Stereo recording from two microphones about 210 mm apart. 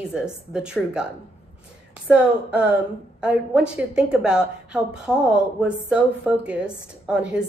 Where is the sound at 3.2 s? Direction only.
5° right (ahead or behind).